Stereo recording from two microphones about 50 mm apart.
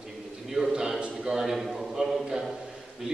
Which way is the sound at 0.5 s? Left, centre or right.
Centre.